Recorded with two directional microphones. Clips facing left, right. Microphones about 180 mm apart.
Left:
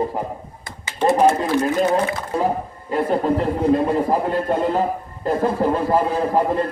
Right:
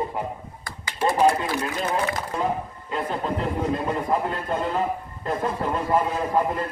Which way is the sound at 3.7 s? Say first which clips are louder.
Left 6 dB; 30° left (ahead or behind).